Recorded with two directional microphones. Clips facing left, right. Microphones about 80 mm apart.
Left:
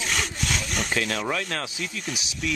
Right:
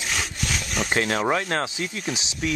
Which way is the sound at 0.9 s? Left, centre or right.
Right.